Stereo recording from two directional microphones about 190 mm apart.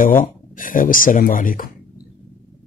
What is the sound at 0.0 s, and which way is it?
Speech, 45° left (ahead or behind).